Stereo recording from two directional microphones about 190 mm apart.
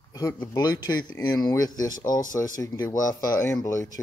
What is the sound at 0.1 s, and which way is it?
Speech, 20° left (ahead or behind).